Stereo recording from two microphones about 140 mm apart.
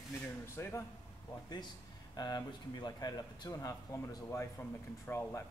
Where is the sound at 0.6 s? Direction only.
20° left (ahead or behind).